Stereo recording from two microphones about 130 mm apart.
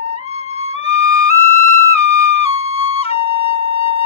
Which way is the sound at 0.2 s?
55° left (ahead or behind).